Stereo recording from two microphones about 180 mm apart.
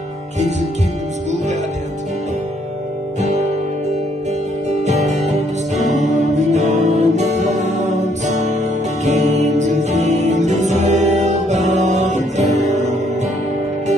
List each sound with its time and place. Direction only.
3.2 s music: 40° right (ahead or behind)
4.6 s music: 40° right (ahead or behind)